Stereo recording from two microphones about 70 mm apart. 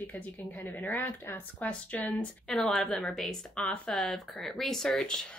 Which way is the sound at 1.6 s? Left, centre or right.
Left.